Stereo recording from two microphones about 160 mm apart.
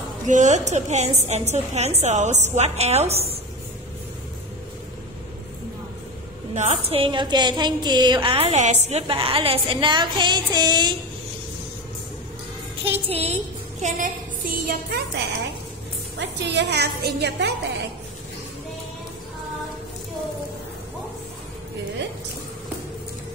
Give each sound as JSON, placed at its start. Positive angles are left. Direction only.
{"t": 0.3, "sound": "a woman's voice", "side_deg": -45}
{"t": 6.5, "sound": "a woman's voice", "side_deg": -45}
{"t": 12.8, "sound": "a woman's voice", "side_deg": -40}